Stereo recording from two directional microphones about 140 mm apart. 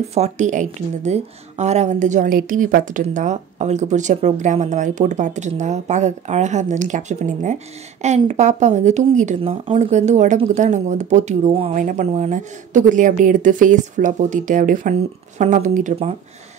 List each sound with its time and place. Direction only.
0.1 s a woman's voice: 55° right (ahead or behind)
9.4 s a woman's voice: 40° right (ahead or behind); by 15.9 s 65° right (ahead or behind)